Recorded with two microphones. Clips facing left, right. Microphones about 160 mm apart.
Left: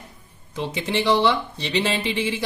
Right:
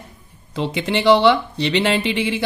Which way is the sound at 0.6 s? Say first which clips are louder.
Right 3 dB; 65° right (ahead or behind).